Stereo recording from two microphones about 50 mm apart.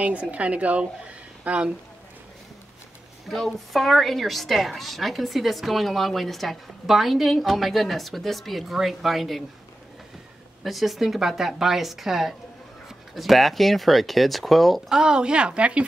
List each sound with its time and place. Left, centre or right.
0.0 s a woman's voice: right
3.3 s a woman's voice: centre
10.6 s a woman's voice: centre
14.9 s a woman's voice: centre